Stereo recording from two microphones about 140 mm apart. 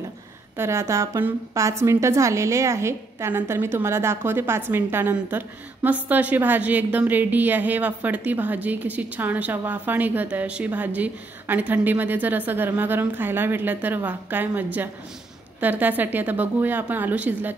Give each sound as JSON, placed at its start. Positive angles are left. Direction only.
{"t": 0.6, "sound": "a woman's voice", "side_deg": -20}